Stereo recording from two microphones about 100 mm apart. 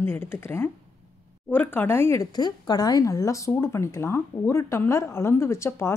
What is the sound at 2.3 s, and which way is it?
Speech, 45° left (ahead or behind).